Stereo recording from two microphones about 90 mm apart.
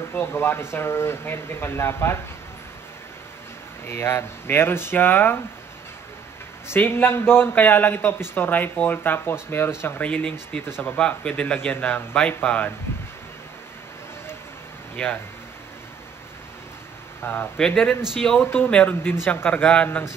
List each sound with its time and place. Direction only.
0.1 s a man's voice: 25° left (ahead or behind)
3.8 s a man's voice: 25° left (ahead or behind)
6.7 s a man's voice: 25° left (ahead or behind)
10.0 s a man's voice: 15° left (ahead or behind)
17.2 s speech: 20° left (ahead or behind)
17.6 s a man's voice: 10° left (ahead or behind)
18.0 s a man's voice: 5° right (ahead or behind)
18.4 s a man's voice: 25° left (ahead or behind)
18.7 s a man's voice: 10° left (ahead or behind)